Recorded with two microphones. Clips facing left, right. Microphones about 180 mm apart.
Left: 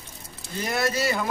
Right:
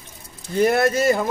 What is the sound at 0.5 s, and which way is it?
Speech, 55° right (ahead or behind).